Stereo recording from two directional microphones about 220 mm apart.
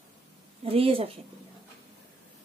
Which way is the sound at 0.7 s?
25° right (ahead or behind).